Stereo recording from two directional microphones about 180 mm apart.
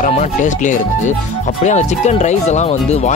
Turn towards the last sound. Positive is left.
turn(degrees=40)  # may be behind; listen again after turning